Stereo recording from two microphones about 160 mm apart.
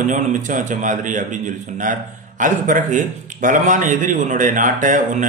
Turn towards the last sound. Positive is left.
turn(degrees=-55)  # may be behind; listen again after turning